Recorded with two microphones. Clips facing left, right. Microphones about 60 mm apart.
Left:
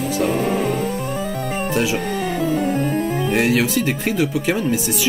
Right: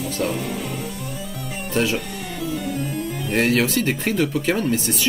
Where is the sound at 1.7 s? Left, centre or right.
Centre.